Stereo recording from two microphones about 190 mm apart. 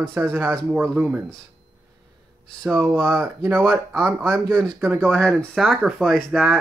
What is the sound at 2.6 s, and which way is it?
Speech, 10° right (ahead or behind).